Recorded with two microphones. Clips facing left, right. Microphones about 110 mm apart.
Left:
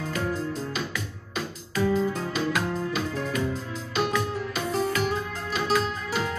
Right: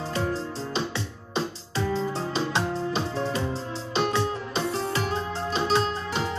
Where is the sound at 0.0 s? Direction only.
30° right (ahead or behind).